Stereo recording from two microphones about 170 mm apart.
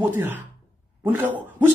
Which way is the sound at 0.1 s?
15° right (ahead or behind).